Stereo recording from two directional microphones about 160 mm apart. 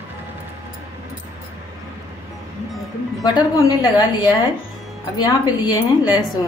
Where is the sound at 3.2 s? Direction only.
25° left (ahead or behind).